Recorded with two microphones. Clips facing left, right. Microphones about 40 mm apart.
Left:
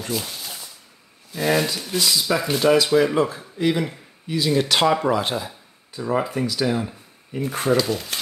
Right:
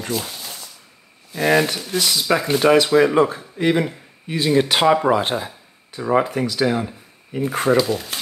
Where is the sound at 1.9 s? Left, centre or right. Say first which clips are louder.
Even; right.